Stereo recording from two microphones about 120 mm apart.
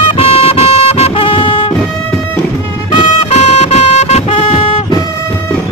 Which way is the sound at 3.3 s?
60° left (ahead or behind).